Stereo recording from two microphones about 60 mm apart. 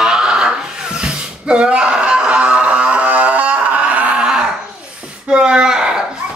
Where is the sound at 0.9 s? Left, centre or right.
Centre.